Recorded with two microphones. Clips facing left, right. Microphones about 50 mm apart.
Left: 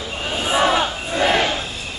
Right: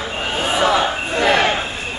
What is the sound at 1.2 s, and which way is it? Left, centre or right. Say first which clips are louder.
Battle cry: right 2 dB; right.